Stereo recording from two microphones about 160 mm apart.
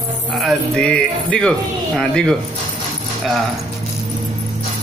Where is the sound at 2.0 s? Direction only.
5° left (ahead or behind).